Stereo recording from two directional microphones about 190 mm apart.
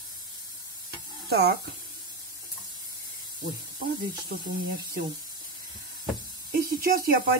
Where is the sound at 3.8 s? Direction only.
50° right (ahead or behind).